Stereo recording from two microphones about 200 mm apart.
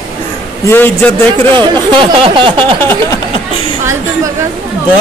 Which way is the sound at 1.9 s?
25° right (ahead or behind).